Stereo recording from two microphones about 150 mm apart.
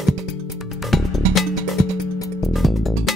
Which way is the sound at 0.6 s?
Centre (ahead or behind).